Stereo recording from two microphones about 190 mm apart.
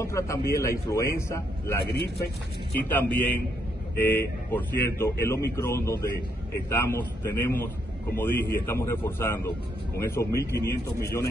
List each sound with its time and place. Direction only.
0.0 s a man's voice: 15° left (ahead or behind)
1.9 s speech: 60° left (ahead or behind)
2.8 s a man's voice: 10° left (ahead or behind)
8.4 s speech: 55° left (ahead or behind)
8.6 s a man's voice: 15° left (ahead or behind)